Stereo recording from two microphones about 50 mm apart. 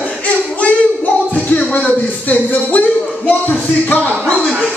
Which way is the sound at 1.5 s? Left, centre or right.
Left.